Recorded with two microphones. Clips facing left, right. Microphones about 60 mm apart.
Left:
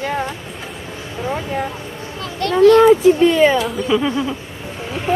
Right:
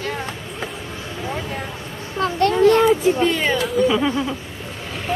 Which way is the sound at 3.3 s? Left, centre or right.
Centre.